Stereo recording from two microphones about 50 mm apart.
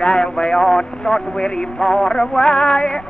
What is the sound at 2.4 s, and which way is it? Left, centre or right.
Music, left.